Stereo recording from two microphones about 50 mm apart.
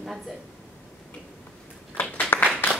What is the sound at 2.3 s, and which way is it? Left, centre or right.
Clapping, left.